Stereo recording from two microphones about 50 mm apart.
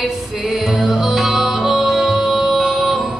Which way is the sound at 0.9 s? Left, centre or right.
Centre.